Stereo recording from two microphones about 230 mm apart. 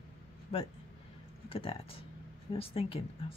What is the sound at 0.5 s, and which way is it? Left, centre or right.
Speech, left.